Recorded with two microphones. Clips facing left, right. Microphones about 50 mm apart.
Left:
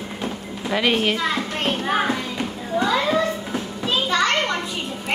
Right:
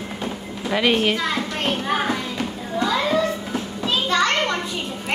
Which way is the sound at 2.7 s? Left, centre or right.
Centre.